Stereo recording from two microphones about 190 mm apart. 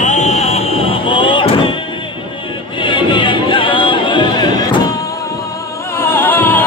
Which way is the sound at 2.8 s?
25° left (ahead or behind).